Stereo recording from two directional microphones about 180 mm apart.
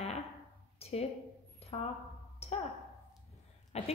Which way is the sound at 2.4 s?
35° left (ahead or behind).